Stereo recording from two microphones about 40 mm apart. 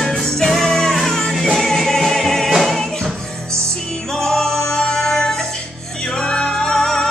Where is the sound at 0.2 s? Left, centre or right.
Centre.